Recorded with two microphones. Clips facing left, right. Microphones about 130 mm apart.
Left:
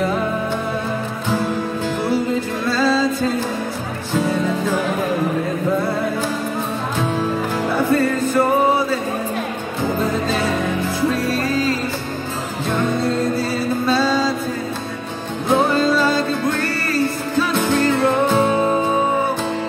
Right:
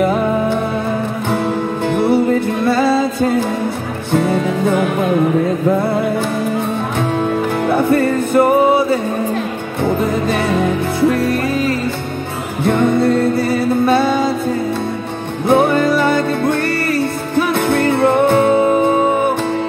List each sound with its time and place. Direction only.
2.0 s music: 60° right (ahead or behind)
7.9 s music: 60° right (ahead or behind)
11.0 s music: 60° right (ahead or behind)
12.6 s music: 60° right (ahead or behind)
15.4 s music: 60° right (ahead or behind)
18.5 s music: 20° right (ahead or behind)